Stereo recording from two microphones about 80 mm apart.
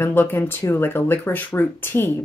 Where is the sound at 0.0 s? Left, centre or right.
Left.